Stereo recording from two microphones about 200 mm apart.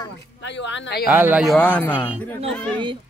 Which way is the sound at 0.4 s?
65° left (ahead or behind).